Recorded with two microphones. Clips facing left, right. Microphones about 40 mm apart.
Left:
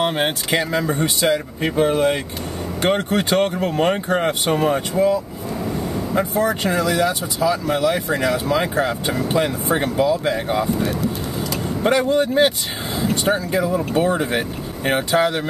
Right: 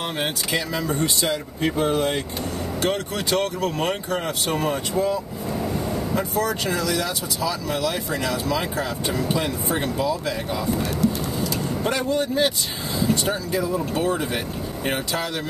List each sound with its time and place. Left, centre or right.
0.0 s speech: left
1.8 s speech: left
3.9 s speech: left
6.1 s speech: left
11.8 s speech: left
14.9 s speech: left